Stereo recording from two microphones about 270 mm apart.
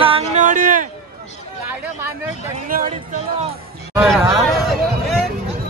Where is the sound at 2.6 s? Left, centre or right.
Right.